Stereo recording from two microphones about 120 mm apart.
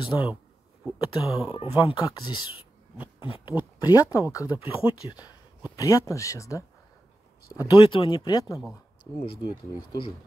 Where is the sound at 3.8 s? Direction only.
30° left (ahead or behind).